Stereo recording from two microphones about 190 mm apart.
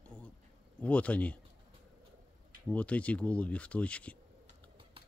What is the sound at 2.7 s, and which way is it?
Speech, 5° left (ahead or behind).